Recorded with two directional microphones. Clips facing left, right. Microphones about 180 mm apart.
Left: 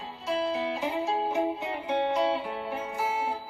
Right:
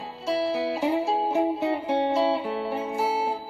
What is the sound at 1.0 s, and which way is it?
Music, 35° right (ahead or behind).